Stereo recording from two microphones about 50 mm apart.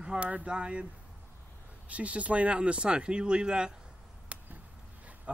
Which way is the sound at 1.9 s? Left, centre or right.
Right.